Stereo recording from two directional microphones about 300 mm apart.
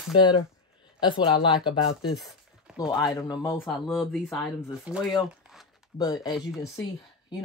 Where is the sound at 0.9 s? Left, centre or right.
Centre.